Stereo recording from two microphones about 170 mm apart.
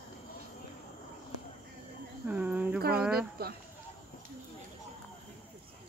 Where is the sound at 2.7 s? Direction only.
65° right (ahead or behind).